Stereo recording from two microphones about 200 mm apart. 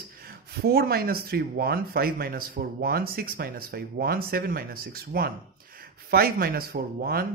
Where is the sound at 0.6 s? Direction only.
50° right (ahead or behind).